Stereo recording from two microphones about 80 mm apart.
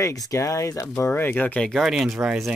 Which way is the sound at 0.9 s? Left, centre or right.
Left.